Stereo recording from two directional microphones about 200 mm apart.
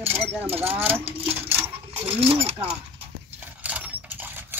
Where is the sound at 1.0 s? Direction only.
30° right (ahead or behind).